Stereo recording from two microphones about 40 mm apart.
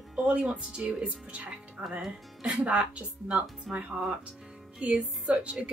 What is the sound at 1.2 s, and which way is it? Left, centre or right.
Speech, right.